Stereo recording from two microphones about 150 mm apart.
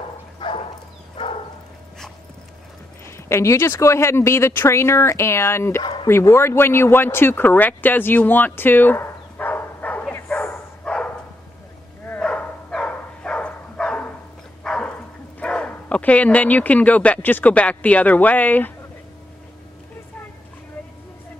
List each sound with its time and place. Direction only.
0.4 s bow-wow: 30° left (ahead or behind)
3.1 s speech: 15° left (ahead or behind)
10.2 s dog: 10° left (ahead or behind)
15.4 s speech: 5° left (ahead or behind)